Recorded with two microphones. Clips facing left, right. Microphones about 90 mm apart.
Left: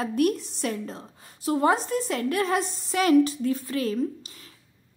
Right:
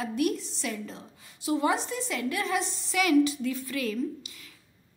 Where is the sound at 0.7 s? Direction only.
40° left (ahead or behind).